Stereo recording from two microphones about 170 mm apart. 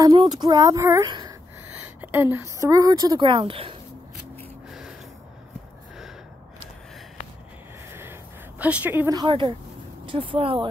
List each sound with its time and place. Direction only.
0.0 s speech: 25° right (ahead or behind)
2.0 s speech: 10° right (ahead or behind); by 3.7 s 30° right (ahead or behind)
4.6 s gasp: 5° right (ahead or behind)
7.9 s a sound: 15° right (ahead or behind)
9.1 s speech: 25° right (ahead or behind)